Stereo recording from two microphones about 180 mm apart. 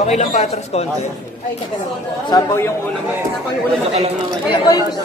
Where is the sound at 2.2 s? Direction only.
15° left (ahead or behind).